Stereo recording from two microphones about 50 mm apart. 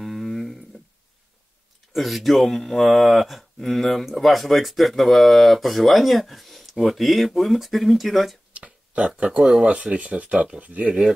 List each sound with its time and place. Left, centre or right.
0.0 s a sound: centre
2.0 s speech: centre
8.5 s a sound: right
9.4 s speech: centre
9.7 s speech: right
10.9 s speech: centre